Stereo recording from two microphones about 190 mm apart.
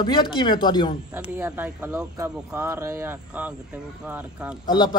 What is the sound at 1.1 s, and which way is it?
Speech, 10° right (ahead or behind).